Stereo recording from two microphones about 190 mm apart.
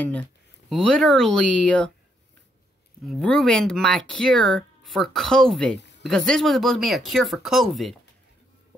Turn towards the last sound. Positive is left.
turn(degrees=0)  # may be behind; listen again after turning